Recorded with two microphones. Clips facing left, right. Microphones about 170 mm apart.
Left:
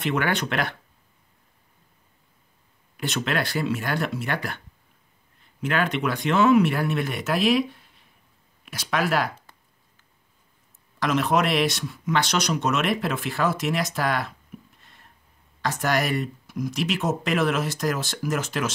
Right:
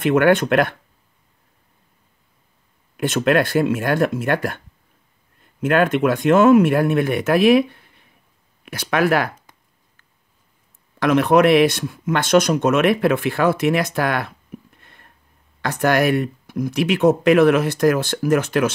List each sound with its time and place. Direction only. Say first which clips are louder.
0.0 s speech: right 10 dB; 50° right (ahead or behind)
3.0 s speech: right 9 dB; 50° right (ahead or behind)
11.0 s speech: right 8 dB; 60° right (ahead or behind)
14.8 s a sound: right 4 dB; 60° right (ahead or behind)
15.6 s speech: right 7 dB; 60° right (ahead or behind)